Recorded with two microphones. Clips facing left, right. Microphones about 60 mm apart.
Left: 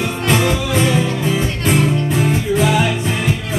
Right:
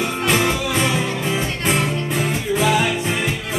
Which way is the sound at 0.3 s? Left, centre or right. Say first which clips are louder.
Left 3 dB; centre.